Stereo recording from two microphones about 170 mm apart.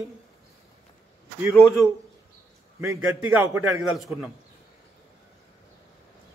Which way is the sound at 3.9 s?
5° right (ahead or behind).